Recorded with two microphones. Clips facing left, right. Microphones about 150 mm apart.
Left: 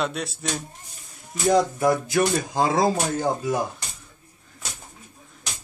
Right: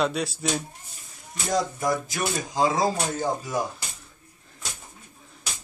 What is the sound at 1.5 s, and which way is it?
Speech, 60° left (ahead or behind).